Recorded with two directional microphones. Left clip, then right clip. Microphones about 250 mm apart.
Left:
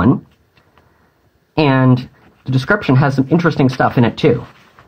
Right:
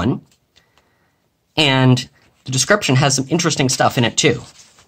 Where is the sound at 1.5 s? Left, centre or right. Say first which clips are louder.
Left 1 dB; right.